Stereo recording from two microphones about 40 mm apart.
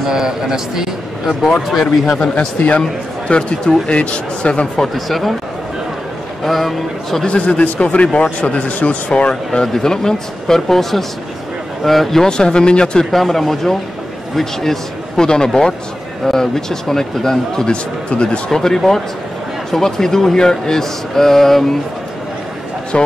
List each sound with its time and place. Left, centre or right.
0.0 s a man's voice: centre
1.7 s a man's voice: centre
2.1 s speech: centre
3.3 s speech: left
4.7 s a man's voice: centre
6.4 s a man's voice: centre
7.2 s speech: left
9.5 s speech: centre
13.1 s a man's voice: centre
17.6 s speech: left
18.5 s speech: centre
22.9 s speech: left